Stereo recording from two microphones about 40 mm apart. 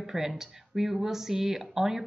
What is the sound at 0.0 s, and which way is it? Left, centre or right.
Speech, centre.